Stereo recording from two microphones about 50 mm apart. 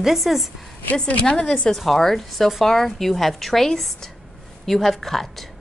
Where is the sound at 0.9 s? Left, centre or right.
Left; by 5.5 s centre.